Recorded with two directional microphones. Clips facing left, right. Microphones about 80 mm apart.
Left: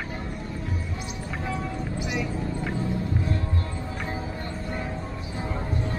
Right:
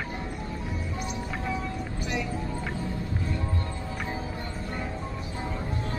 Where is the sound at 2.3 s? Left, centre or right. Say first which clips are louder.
Left 3 dB; centre.